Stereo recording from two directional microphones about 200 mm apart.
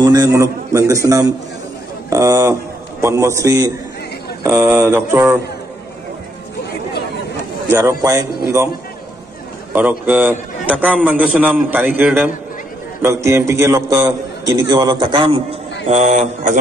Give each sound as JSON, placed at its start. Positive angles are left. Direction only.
{"t": 0.0, "sound": "a sound", "side_deg": -20}
{"t": 3.0, "sound": "a man's voice", "side_deg": -15}
{"t": 7.7, "sound": "a man's voice", "side_deg": -15}
{"t": 9.7, "sound": "a man's voice", "side_deg": -10}
{"t": 15.9, "sound": "a man's voice", "side_deg": -35}